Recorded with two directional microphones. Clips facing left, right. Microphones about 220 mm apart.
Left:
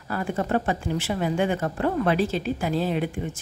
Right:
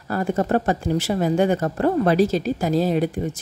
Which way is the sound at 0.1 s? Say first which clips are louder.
Right 4 dB; 40° right (ahead or behind).